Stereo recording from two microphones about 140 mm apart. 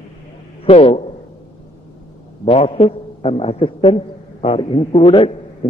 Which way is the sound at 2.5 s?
45° left (ahead or behind).